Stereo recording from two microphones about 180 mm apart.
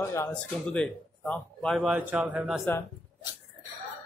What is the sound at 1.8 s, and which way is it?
Speech, 10° right (ahead or behind).